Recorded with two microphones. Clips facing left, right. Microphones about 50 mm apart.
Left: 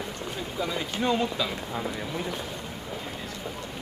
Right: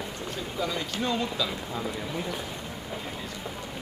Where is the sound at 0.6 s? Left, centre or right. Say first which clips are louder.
Left 1 dB; centre.